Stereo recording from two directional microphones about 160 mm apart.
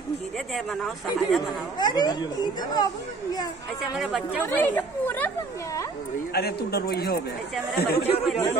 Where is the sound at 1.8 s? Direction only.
25° left (ahead or behind).